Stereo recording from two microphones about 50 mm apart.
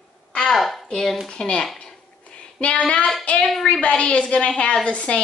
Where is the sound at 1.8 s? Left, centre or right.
Centre.